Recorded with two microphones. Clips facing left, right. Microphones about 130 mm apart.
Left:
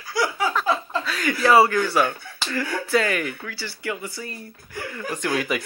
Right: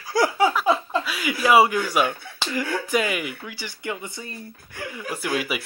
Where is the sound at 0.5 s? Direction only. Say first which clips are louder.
Right 2 dB; 10° right (ahead or behind).